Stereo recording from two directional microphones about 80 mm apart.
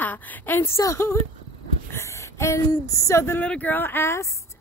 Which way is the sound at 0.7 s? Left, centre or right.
Left.